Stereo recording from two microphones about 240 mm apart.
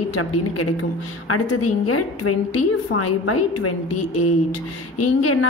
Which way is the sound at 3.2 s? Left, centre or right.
Left.